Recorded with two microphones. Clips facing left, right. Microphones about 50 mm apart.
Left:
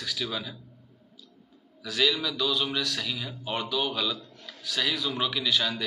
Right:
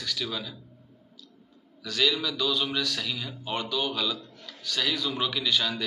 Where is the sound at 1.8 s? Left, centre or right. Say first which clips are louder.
Even; centre.